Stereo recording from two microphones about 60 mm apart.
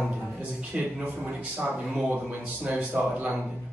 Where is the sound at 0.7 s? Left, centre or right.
Centre.